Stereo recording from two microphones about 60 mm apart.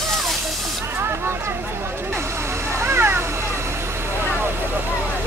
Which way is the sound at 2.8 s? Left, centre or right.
Right.